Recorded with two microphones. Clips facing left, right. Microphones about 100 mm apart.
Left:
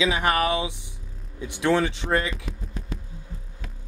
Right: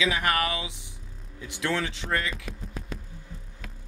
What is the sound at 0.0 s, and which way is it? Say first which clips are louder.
Speech: left 4 dB; 20° left (ahead or behind).